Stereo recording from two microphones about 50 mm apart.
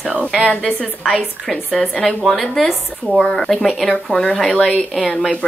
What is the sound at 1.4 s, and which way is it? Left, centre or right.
Speech, right.